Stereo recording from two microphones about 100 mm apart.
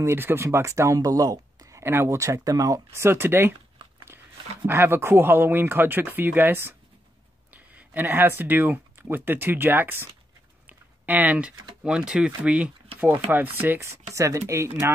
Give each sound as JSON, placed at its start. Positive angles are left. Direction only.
{"t": 0.0, "sound": "speech", "side_deg": -25}
{"t": 4.6, "sound": "speech", "side_deg": -25}
{"t": 10.7, "sound": "typing", "side_deg": -15}
{"t": 11.8, "sound": "speech", "side_deg": -10}